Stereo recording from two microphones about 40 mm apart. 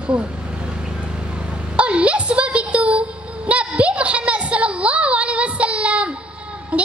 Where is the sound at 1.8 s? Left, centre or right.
Right.